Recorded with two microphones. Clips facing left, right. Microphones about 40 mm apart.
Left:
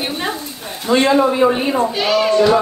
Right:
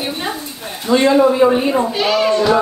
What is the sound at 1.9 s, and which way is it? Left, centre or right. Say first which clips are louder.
Speech: even; centre.